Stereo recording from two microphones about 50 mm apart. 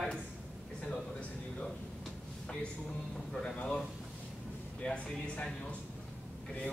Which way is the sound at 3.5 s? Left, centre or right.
Left.